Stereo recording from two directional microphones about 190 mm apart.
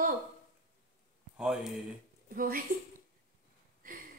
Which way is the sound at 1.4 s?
5° right (ahead or behind).